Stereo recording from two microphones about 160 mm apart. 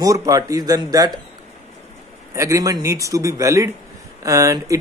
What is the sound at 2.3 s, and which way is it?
A man's voice, 20° right (ahead or behind).